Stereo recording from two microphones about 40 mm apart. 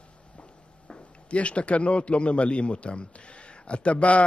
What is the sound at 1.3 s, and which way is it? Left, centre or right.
A man's voice, left.